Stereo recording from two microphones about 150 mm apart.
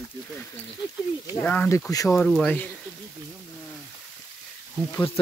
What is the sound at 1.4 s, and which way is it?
Speech, 10° left (ahead or behind).